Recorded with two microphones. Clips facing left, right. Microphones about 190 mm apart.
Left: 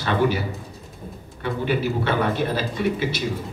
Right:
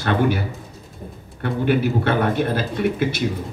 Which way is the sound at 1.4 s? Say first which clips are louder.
Right 4 dB; 55° right (ahead or behind).